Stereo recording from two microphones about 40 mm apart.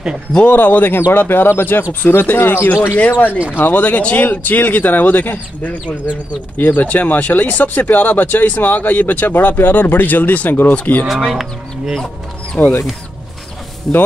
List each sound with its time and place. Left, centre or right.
0.5 s speech: left
2.3 s speech: left
2.6 s speech: left
3.3 s speech: right
3.5 s speech: left
11.3 s speech: centre
12.5 s speech: left